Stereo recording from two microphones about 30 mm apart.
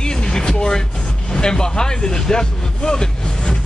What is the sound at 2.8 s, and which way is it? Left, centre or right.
Vehicle, left.